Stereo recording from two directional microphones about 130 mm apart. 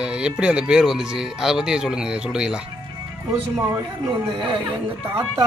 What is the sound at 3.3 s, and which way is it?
Speech, 20° right (ahead or behind).